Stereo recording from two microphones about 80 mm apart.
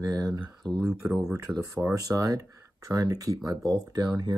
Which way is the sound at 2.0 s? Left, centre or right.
Right.